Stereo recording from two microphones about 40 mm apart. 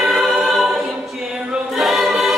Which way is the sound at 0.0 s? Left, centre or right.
Centre.